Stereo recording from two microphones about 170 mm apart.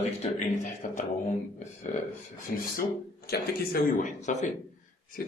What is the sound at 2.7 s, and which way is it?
Speech, 65° left (ahead or behind).